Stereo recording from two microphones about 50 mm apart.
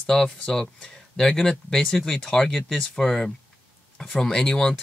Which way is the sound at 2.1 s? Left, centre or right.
Centre.